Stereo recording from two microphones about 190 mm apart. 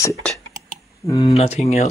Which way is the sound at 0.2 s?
5° left (ahead or behind).